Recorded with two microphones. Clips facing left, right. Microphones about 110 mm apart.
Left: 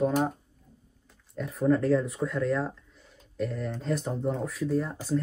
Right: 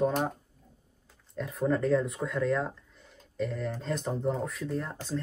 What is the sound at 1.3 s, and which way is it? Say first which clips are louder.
Speech: left 4 dB; centre (ahead or behind).